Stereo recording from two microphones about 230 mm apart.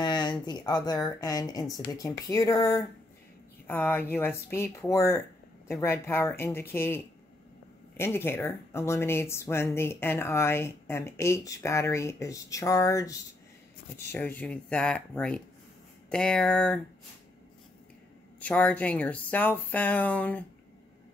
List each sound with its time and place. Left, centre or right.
0.0 s speech: centre
8.0 s speech: centre
18.4 s speech: centre